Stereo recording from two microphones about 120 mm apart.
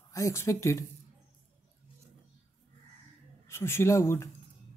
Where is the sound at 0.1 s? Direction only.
25° left (ahead or behind).